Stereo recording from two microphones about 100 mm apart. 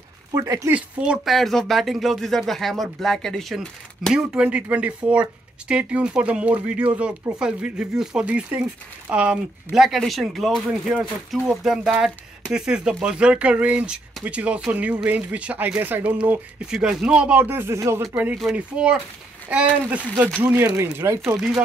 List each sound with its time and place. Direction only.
0.3 s speech: 35° right (ahead or behind)
0.7 s speech: 10° right (ahead or behind); by 18.0 s 25° right (ahead or behind)
18.4 s speech: 5° right (ahead or behind); by 21.2 s 30° right (ahead or behind)